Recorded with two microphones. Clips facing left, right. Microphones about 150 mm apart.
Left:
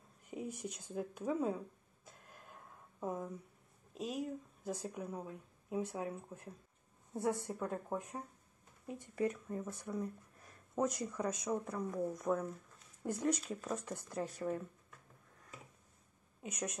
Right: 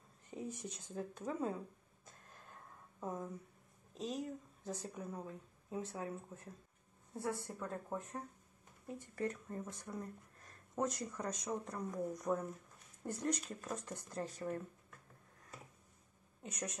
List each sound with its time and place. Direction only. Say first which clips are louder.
0.3 s speech: left 2 dB; 10° left (ahead or behind)
2.0 s a sound: left 2 dB; 10° left (ahead or behind)
3.9 s speech: left 2 dB; 10° left (ahead or behind)
16.4 s speech: left 3 dB; 10° left (ahead or behind)